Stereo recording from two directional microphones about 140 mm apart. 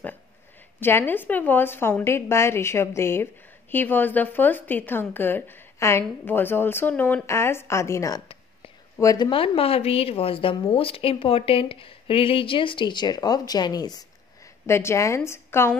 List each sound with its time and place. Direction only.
0.7 s a woman's voice: 15° left (ahead or behind)